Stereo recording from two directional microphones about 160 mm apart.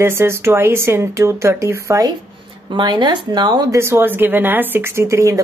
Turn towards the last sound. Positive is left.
turn(degrees=-20)  # may be behind; listen again after turning